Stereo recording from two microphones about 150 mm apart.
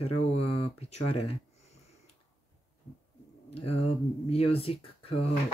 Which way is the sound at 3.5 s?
45° left (ahead or behind).